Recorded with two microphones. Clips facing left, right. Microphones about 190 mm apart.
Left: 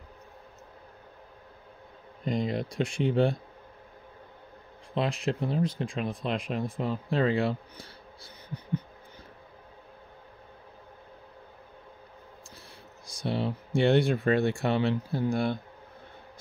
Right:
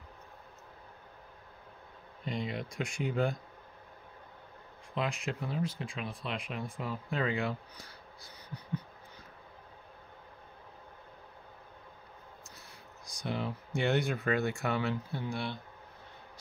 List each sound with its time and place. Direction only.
2.2 s speech: 40° left (ahead or behind)
4.9 s speech: 35° left (ahead or behind)
13.3 s speech: 30° left (ahead or behind); by 15.6 s 45° left (ahead or behind)